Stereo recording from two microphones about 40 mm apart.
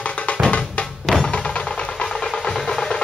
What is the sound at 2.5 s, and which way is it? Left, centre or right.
Music, centre.